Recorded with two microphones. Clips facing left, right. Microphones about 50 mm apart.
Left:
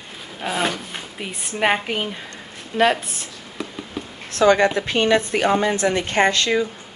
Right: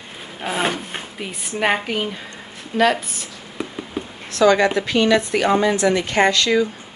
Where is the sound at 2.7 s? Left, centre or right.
Left.